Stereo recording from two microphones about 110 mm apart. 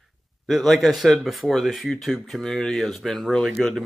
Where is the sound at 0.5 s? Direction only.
Centre (ahead or behind).